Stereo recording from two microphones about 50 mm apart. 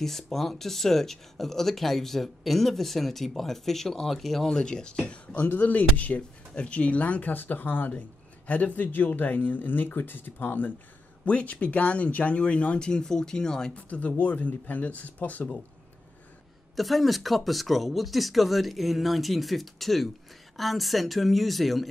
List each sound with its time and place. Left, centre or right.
0.0 s speech: centre
4.5 s speech: centre; by 10.7 s left
11.2 s speech: left; by 13.7 s centre
13.7 s speech: left
16.7 s speech: centre